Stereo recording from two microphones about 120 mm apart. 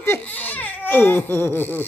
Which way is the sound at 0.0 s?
15° left (ahead or behind).